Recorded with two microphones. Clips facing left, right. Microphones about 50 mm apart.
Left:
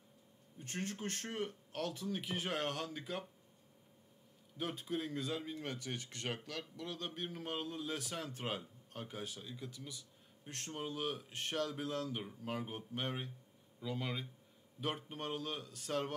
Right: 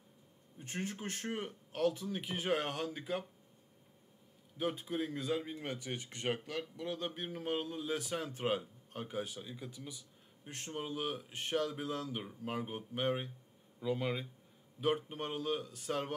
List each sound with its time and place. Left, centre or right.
0.6 s speech: centre
4.6 s speech: centre